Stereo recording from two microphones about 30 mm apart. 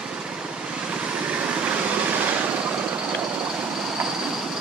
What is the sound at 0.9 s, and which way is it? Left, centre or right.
Vehicle, right.